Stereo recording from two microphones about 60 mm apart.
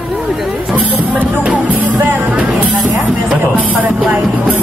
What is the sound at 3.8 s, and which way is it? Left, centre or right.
Music, right.